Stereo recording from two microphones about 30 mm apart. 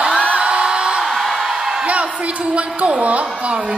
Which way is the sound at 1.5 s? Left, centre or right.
Centre.